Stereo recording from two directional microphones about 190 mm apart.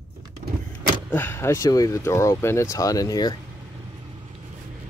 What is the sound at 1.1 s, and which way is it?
Speech, 10° left (ahead or behind).